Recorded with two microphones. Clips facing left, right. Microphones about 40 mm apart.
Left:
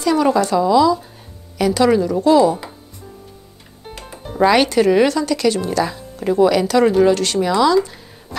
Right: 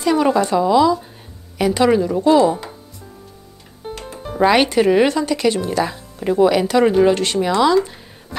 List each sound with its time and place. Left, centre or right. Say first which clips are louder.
0.0 s speech: even; right
4.5 s speech: even; right